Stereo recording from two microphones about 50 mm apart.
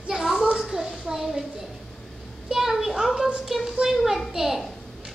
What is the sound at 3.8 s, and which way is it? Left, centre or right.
Speech, centre.